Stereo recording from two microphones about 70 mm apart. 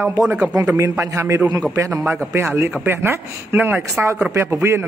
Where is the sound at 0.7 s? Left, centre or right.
Right.